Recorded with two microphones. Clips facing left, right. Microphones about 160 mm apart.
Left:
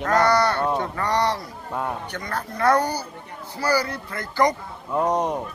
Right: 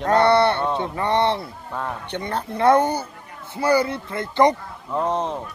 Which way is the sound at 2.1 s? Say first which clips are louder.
Right 4 dB; 25° right (ahead or behind).